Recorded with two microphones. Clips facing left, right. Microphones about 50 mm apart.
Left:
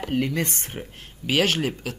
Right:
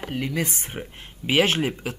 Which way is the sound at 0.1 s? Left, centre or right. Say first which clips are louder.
Left 2 dB; centre.